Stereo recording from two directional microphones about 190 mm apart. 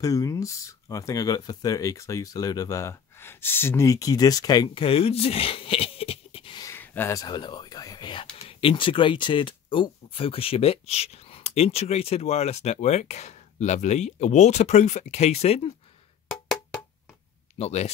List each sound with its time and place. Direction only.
0.0 s speech: 20° left (ahead or behind)
6.7 s speech: 10° left (ahead or behind); by 15.7 s 35° left (ahead or behind)
17.6 s speech: 35° left (ahead or behind)